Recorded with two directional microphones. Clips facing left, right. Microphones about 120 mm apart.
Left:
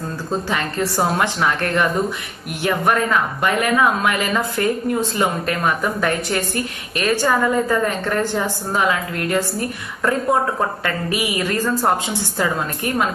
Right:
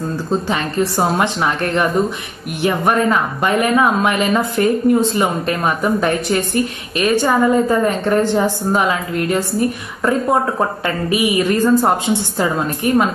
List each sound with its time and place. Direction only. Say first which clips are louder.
0.5 s speech: right 4 dB; 20° right (ahead or behind)